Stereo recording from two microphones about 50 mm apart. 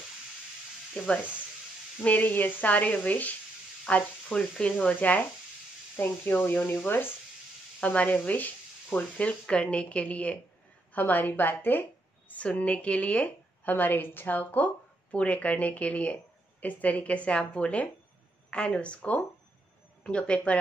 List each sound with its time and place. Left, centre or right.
1.0 s speech: left
2.0 s a woman's voice: left
5.9 s speech: left
7.8 s a woman's voice: left
10.9 s a woman's voice: left
12.3 s speech: left
13.7 s a woman's voice: left